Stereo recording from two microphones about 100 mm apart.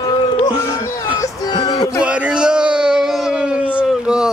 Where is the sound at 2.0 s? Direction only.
10° right (ahead or behind).